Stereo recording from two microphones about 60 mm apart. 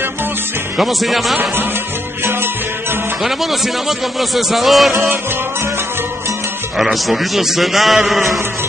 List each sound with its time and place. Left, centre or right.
0.7 s a man's voice: centre
4.2 s a man's voice: centre
4.9 s music: right
6.8 s a man's voice: centre